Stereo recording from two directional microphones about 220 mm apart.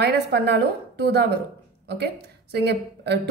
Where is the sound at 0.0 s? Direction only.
50° right (ahead or behind).